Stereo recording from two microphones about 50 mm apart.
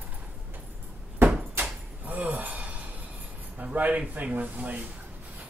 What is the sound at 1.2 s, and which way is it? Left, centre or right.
Door, right.